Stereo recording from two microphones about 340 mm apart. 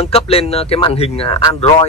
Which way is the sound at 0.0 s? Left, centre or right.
Centre.